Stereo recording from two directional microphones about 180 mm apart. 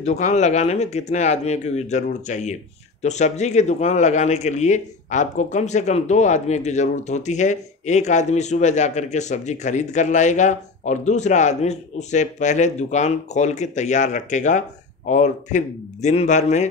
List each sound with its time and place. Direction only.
0.0 s speech: 40° left (ahead or behind)